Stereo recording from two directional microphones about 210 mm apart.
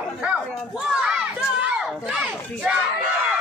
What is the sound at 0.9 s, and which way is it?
Crowd, 5° right (ahead or behind).